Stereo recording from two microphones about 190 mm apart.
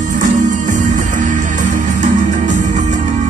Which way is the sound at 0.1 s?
40° right (ahead or behind).